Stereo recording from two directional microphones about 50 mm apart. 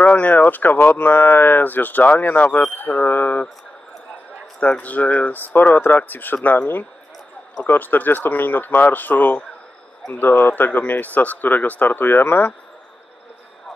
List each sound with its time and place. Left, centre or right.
0.0 s speech: left
4.6 s speech: left